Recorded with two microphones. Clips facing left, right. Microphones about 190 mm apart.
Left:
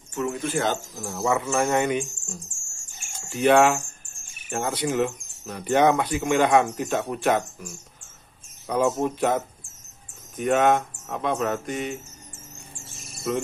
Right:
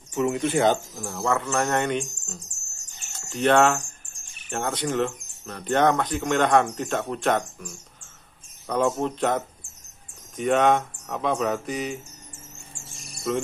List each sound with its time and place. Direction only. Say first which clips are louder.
0.1 s speech: right 3 dB; 15° right (ahead or behind)
0.7 s speech: left 1 dB; centre (ahead or behind)
3.0 s cricket: left 1 dB; 10° left (ahead or behind)
4.4 s speech: left 1 dB; 5° left (ahead or behind)
12.8 s cricket: even; centre (ahead or behind)